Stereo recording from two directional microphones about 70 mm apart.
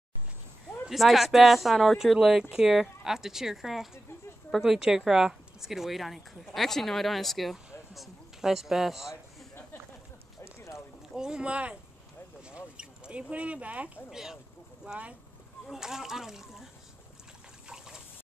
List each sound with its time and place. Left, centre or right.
0.8 s a woman's voice: centre
11.1 s speech: centre
12.4 s a sound: centre
14.1 s speech: centre
14.9 s speech: centre
15.7 s speech: centre
17.6 s water: centre